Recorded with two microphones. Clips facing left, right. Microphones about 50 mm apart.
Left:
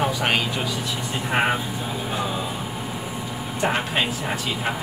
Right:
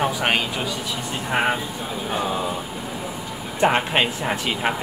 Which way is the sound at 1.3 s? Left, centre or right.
Centre.